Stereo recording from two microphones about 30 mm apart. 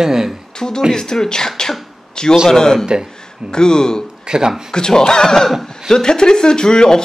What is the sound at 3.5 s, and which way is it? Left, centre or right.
Speech, left.